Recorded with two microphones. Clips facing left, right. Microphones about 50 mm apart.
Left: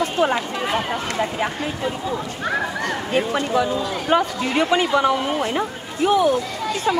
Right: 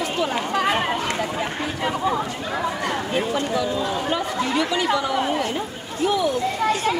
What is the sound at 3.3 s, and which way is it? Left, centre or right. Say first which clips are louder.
Speech: left 3 dB; left.